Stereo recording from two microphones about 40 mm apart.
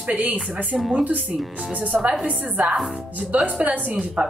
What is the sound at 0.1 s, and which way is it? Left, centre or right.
Speech, right.